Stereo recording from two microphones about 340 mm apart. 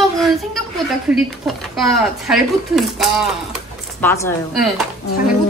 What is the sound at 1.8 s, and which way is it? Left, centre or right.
Speech, centre.